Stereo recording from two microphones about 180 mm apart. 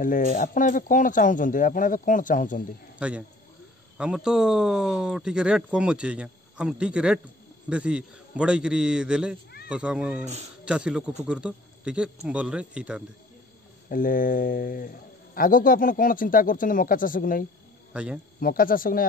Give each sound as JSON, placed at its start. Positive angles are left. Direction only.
{"t": 0.0, "sound": "speech", "side_deg": 50}
{"t": 3.0, "sound": "a man's voice", "side_deg": -5}
{"t": 13.8, "sound": "speech", "side_deg": 50}
{"t": 17.9, "sound": "speech", "side_deg": -5}
{"t": 18.4, "sound": "speech", "side_deg": 50}